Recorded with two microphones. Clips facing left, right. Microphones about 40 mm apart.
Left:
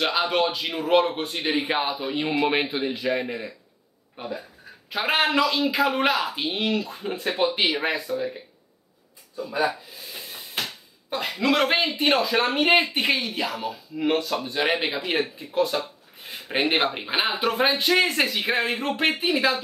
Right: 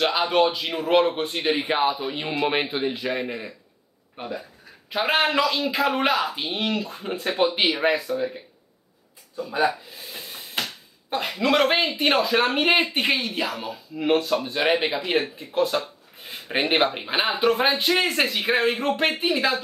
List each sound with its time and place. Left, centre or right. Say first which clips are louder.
0.0 s a man's voice: right 2 dB; centre
4.9 s a man's voice: right 1 dB; centre
9.5 s speech: right 2 dB; centre
11.1 s a man's voice: right 1 dB; centre